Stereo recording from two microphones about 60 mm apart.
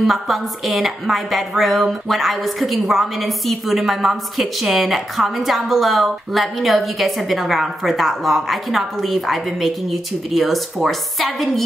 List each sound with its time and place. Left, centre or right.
0.0 s a woman's voice: centre